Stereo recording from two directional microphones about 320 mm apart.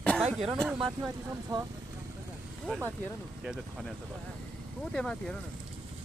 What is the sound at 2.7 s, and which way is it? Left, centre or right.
Speech, centre.